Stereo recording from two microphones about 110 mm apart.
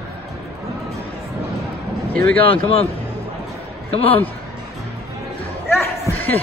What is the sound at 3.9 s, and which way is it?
Speech, 65° left (ahead or behind).